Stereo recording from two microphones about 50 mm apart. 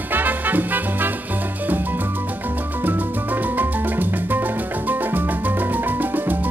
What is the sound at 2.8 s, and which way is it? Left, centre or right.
Music, right.